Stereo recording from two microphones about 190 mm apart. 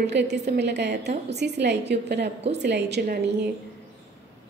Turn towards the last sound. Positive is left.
turn(degrees=-65)  # may be behind; listen again after turning